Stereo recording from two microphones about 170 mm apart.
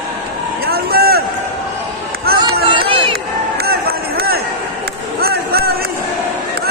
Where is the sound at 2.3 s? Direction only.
65° right (ahead or behind).